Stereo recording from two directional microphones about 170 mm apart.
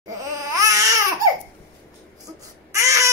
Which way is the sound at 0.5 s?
20° right (ahead or behind).